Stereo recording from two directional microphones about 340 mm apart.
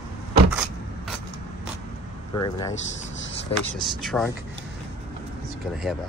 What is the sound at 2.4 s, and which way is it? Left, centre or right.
Speech, centre.